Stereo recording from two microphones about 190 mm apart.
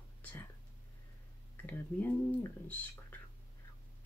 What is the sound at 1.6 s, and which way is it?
Speech, 10° left (ahead or behind).